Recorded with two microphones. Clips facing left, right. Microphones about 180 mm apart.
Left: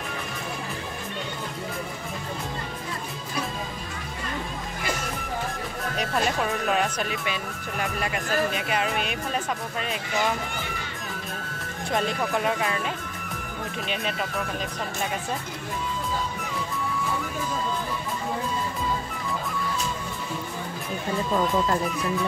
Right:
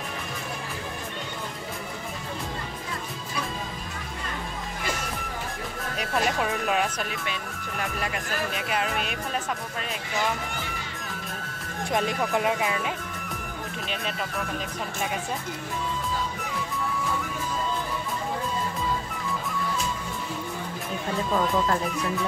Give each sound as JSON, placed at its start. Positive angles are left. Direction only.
{"t": 5.9, "sound": "speech", "side_deg": -5}
{"t": 8.5, "sound": "speech", "side_deg": 0}
{"t": 12.4, "sound": "speech", "side_deg": -15}
{"t": 21.3, "sound": "speech", "side_deg": 0}